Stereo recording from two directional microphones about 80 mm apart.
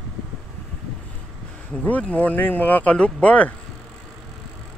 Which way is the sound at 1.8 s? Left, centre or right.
Centre.